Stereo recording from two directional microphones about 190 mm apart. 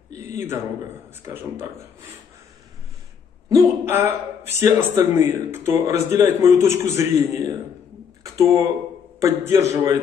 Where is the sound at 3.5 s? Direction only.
15° right (ahead or behind).